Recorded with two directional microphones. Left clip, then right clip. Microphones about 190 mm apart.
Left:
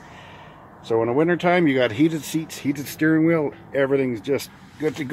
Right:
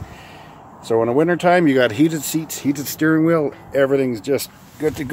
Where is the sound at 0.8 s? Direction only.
25° right (ahead or behind).